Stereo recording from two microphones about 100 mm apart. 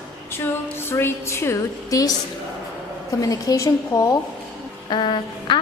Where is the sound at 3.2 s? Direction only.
35° left (ahead or behind).